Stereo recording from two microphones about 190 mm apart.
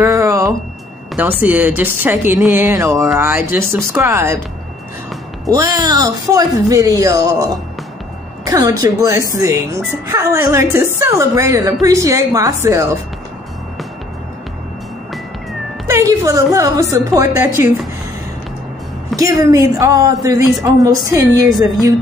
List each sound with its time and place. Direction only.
0.0 s a sound: 15° right (ahead or behind)
1.4 s a woman's voice: 10° right (ahead or behind)
5.5 s a woman's voice: 20° right (ahead or behind)
15.9 s a sound: 15° right (ahead or behind)
16.9 s a woman's voice: 15° right (ahead or behind)
19.1 s a woman's voice: 15° right (ahead or behind)